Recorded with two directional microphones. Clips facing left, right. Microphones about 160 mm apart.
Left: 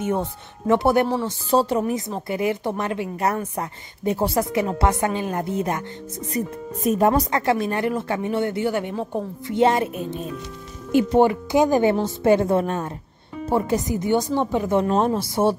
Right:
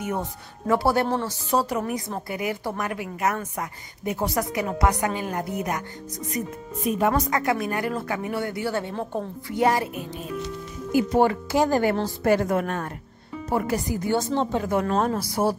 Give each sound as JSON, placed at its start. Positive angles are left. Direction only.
{"t": 0.0, "sound": "a woman's voice", "side_deg": 25}
{"t": 6.8, "sound": "speech", "side_deg": 40}
{"t": 7.2, "sound": "a woman's voice", "side_deg": 30}
{"t": 9.5, "sound": "a woman's voice", "side_deg": 25}